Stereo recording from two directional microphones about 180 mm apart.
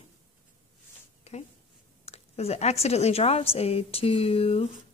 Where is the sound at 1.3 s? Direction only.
35° left (ahead or behind).